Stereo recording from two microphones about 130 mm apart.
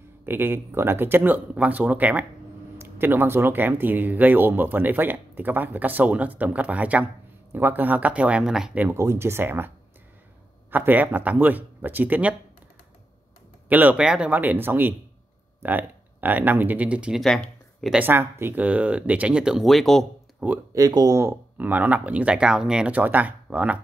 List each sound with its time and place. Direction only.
0.2 s speech: 15° right (ahead or behind)
8.8 s speech: 20° right (ahead or behind)
10.7 s speech: 15° right (ahead or behind)
13.7 s speech: 15° right (ahead or behind)
17.2 s speech: 5° left (ahead or behind)
17.9 s speech: 15° right (ahead or behind); by 20.4 s centre (ahead or behind)
20.7 s speech: 30° right (ahead or behind); by 23.8 s 10° right (ahead or behind)